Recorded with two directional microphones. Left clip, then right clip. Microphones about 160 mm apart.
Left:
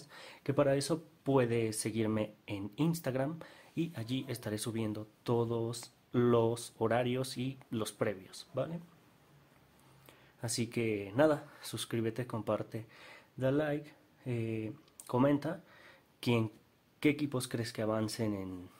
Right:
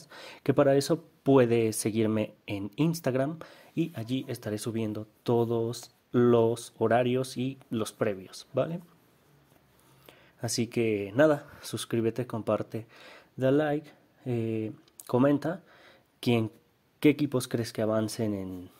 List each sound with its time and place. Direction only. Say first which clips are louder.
0.0 s speech: right 9 dB; 40° right (ahead or behind)
10.0 s speech: right 7 dB; 30° right (ahead or behind)